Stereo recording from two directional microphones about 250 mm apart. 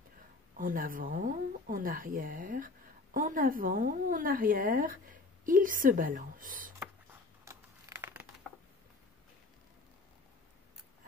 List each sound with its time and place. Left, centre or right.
0.6 s speech: right
6.8 s computer keyboard: centre